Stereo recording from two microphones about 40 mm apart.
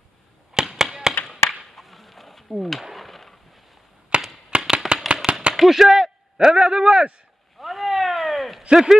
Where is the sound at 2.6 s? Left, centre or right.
Centre.